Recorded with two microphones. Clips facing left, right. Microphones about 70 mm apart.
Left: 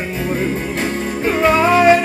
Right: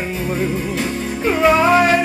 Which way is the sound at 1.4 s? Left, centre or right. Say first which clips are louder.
Even; centre.